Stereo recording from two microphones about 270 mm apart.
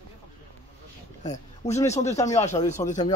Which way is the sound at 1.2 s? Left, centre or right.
Left.